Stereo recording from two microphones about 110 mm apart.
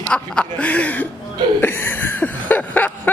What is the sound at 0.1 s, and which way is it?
Speech, 10° left (ahead or behind).